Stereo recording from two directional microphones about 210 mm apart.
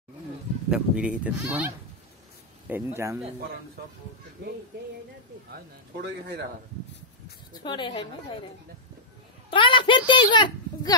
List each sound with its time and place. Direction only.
0.7 s speech: 5° right (ahead or behind)
2.7 s speech: 10° right (ahead or behind)
4.4 s speech: 50° right (ahead or behind)
7.6 s a woman's voice: 20° left (ahead or behind)
9.5 s a woman's voice: 25° left (ahead or behind)